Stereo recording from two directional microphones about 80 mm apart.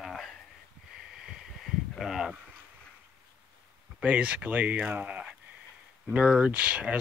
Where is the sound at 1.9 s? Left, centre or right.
Centre.